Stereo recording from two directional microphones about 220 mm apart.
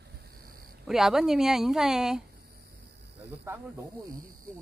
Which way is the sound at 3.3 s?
10° right (ahead or behind).